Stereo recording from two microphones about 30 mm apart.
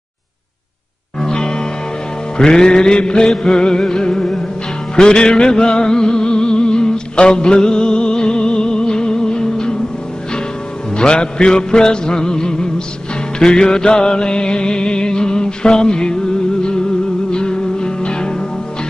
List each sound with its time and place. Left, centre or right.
1.2 s music: left
4.2 s music: centre
4.9 s music: left
5.6 s a sound: left
11.0 s music: left
17.3 s music: left